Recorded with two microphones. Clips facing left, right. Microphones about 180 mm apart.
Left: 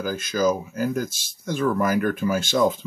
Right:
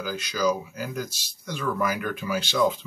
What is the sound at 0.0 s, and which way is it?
Speech, 50° left (ahead or behind).